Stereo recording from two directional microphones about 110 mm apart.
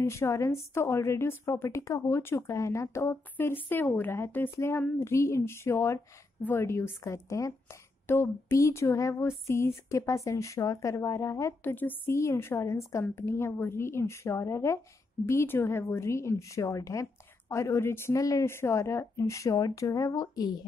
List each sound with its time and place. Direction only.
0.0 s speech: 25° left (ahead or behind)